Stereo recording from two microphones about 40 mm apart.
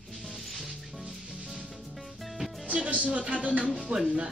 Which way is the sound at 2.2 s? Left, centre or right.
Centre.